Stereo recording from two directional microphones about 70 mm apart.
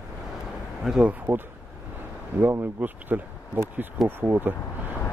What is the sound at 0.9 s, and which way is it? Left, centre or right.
Speech, centre.